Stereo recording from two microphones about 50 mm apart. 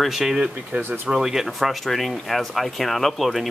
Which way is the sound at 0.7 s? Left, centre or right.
Right.